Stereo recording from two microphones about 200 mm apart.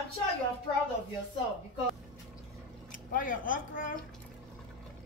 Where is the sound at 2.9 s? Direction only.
45° left (ahead or behind).